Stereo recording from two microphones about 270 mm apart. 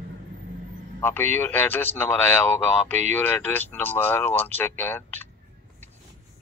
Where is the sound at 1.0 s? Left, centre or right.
Centre.